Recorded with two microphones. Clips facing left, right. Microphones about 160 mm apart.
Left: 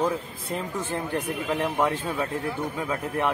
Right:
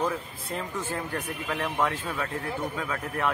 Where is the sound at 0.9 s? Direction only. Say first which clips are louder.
Left 4 dB; 20° left (ahead or behind).